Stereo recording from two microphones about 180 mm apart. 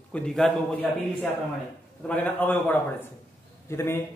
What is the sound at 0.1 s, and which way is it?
Speech, 5° left (ahead or behind).